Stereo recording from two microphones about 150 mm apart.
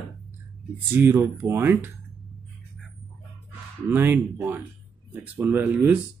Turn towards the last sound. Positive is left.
turn(degrees=-10)  # may be behind; listen again after turning